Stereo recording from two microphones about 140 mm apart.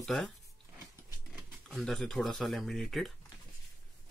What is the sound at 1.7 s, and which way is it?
Speech, 5° left (ahead or behind).